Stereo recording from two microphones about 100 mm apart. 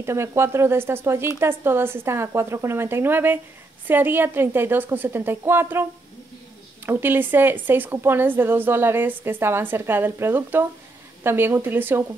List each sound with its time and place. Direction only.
0.0 s a woman's voice: 25° right (ahead or behind)
6.9 s a woman's voice: 20° right (ahead or behind)